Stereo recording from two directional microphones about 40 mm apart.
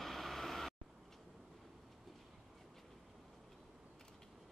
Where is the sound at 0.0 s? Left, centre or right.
Centre.